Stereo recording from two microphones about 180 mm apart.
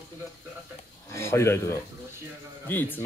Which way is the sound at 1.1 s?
15° left (ahead or behind).